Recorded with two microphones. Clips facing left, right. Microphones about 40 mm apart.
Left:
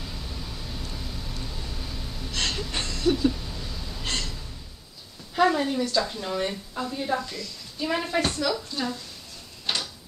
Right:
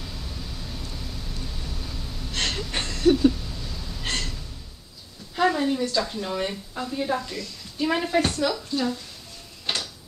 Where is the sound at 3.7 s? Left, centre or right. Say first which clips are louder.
Even; centre.